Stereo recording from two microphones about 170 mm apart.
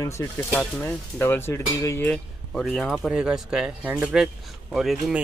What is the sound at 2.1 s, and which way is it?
Speech, centre (ahead or behind).